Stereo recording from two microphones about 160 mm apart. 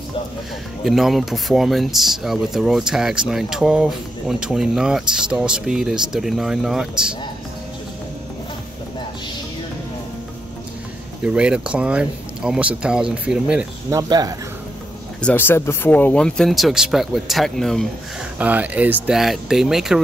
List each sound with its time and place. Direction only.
0.8 s speech: centre (ahead or behind)
11.2 s speech: 5° right (ahead or behind)
13.9 s speech: 25° right (ahead or behind)
15.2 s speech: 15° left (ahead or behind)
18.4 s speech: 10° right (ahead or behind)